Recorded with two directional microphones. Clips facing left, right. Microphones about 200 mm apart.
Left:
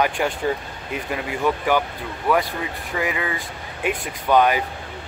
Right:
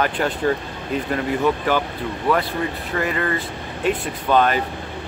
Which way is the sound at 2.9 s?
10° left (ahead or behind).